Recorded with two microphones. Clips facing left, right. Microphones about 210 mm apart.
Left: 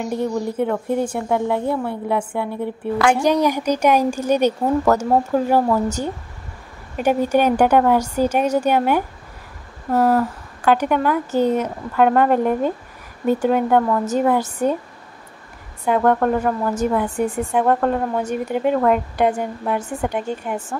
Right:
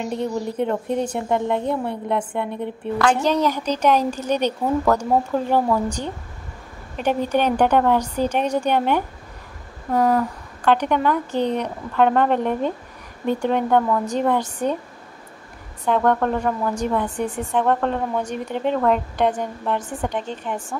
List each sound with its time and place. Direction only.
0.0 s a woman's voice: 5° left (ahead or behind)
15.8 s speech: 10° left (ahead or behind)